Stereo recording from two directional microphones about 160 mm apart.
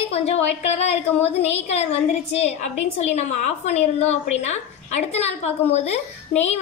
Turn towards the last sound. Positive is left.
turn(degrees=40)  # may be behind; listen again after turning